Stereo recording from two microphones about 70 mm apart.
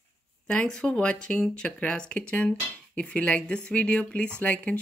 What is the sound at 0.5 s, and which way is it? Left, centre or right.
Speech, centre.